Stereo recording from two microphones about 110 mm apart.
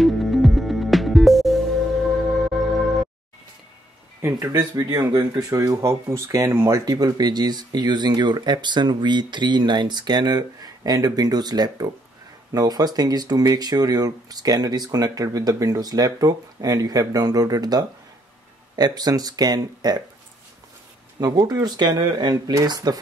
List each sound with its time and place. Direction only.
0.0 s music: centre (ahead or behind)
4.2 s speech: 30° right (ahead or behind)
6.8 s speech: 35° right (ahead or behind)
21.2 s speech: 35° right (ahead or behind)